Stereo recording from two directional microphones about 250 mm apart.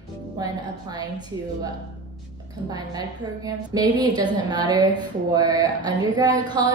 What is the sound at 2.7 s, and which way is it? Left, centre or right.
A woman's voice, centre.